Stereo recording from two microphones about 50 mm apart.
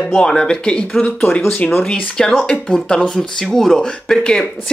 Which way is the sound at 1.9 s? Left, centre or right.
Centre.